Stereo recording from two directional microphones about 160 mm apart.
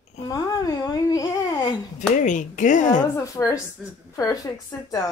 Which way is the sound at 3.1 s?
20° left (ahead or behind).